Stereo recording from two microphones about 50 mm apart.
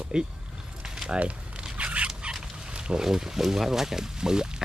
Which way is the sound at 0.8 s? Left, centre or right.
Centre.